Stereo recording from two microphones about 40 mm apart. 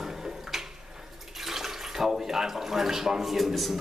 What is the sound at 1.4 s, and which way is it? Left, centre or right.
Speech, centre.